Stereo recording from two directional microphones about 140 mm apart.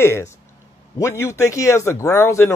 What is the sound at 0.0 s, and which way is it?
A man's voice, 20° left (ahead or behind).